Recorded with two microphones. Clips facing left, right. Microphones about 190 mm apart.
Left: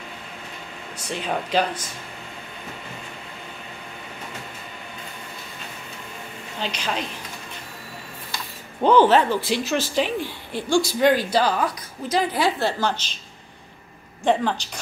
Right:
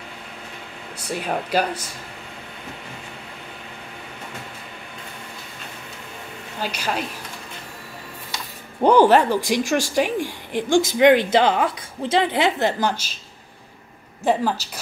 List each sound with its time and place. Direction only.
0.9 s speech: 10° right (ahead or behind)
6.6 s speech: 10° right (ahead or behind)
8.8 s a woman's voice: 10° right (ahead or behind)
14.2 s a woman's voice: 5° right (ahead or behind)